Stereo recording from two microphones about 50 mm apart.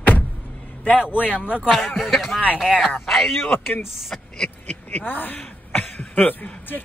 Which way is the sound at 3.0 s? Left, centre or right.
Centre.